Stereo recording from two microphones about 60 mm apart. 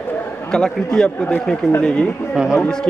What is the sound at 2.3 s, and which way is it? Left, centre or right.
Speech, centre.